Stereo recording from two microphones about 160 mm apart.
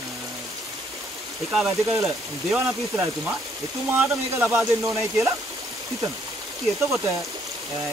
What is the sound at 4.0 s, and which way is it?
Speech, 15° right (ahead or behind).